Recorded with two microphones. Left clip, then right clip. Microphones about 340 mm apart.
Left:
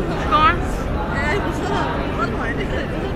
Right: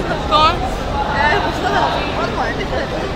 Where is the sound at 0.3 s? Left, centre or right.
Centre.